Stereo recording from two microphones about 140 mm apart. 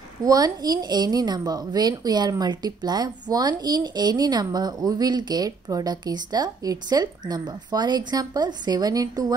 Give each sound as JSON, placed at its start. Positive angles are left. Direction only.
{"t": 0.2, "sound": "a woman's voice", "side_deg": -25}